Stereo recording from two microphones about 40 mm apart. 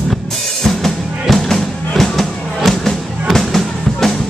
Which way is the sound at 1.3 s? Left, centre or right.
Centre.